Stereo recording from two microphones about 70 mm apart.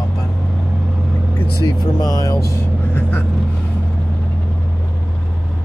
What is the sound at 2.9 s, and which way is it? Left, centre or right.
Vehicle, left.